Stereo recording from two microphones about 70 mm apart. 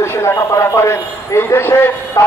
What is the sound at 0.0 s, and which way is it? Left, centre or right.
A man's voice, left.